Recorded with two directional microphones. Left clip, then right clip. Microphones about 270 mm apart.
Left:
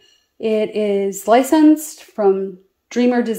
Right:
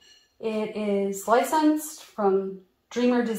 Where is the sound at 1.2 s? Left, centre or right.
Left.